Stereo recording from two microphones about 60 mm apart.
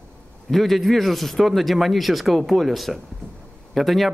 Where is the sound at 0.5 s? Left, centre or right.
Centre.